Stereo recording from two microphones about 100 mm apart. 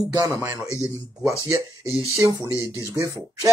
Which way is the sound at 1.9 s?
30° left (ahead or behind).